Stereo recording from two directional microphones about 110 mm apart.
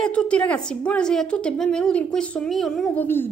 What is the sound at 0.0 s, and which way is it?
A woman's voice, 10° left (ahead or behind).